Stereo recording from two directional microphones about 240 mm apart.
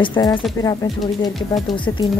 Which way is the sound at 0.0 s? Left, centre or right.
Centre.